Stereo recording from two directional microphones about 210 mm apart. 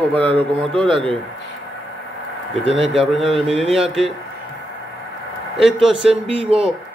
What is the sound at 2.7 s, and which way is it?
Speech, centre (ahead or behind).